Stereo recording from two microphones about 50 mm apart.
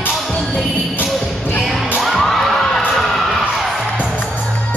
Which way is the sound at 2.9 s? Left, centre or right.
Centre.